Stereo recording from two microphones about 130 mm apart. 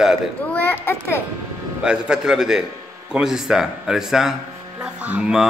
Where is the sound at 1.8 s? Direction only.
5° right (ahead or behind).